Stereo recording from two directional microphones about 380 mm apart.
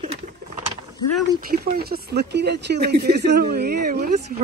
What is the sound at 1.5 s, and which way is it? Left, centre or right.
Speech, right.